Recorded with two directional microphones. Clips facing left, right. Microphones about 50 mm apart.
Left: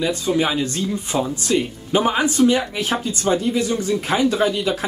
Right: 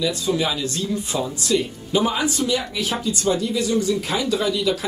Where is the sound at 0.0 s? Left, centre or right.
Left.